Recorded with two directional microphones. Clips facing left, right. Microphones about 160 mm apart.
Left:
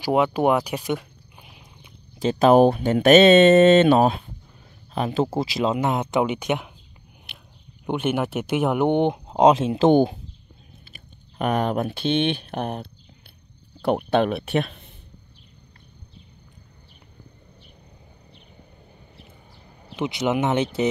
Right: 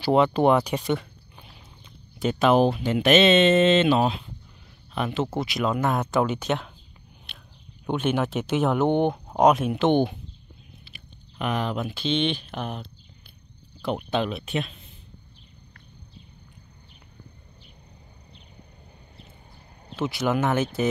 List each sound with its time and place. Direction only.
0.0 s a sound: 10° left (ahead or behind)
2.1 s speech: 30° left (ahead or behind)
2.5 s speech: 50° left (ahead or behind)
4.9 s speech: 35° left (ahead or behind); by 6.7 s 15° left (ahead or behind)
7.8 s speech: 10° left (ahead or behind); by 10.1 s 35° left (ahead or behind)
11.3 s speech: 50° left (ahead or behind)
19.9 s speech: 20° left (ahead or behind)